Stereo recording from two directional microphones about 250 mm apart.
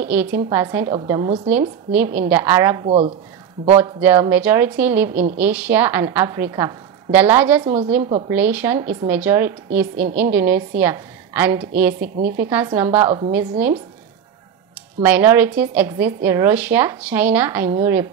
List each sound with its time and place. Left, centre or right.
0.0 s a woman's voice: centre
1.5 s a woman's voice: centre
7.6 s a woman's voice: centre
8.3 s a woman's voice: centre
15.0 s a woman's voice: centre